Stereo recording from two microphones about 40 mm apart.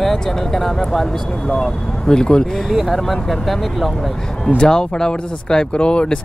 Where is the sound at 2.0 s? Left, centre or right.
Centre.